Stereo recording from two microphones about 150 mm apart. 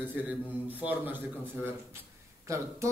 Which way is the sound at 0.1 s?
10° right (ahead or behind).